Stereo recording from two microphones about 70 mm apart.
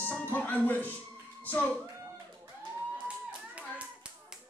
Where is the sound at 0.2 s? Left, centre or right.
Left.